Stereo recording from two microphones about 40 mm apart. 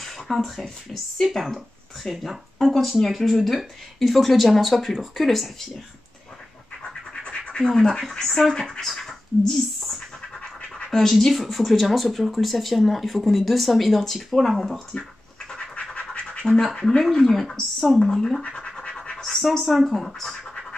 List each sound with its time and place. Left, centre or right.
0.3 s speech: centre
2.0 s speech: centre
7.5 s speech: centre
8.3 s speech: centre
8.5 s speech: centre
15.7 s scratch: left
16.6 s speech: centre
18.4 s scratch: left
19.2 s speech: centre